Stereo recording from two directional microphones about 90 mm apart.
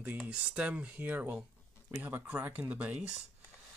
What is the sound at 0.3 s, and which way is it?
Speech, 15° right (ahead or behind).